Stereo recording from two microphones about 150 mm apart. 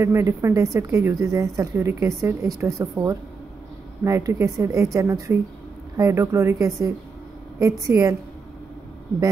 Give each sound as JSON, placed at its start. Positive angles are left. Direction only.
{"t": 0.0, "sound": "a woman's voice", "side_deg": -20}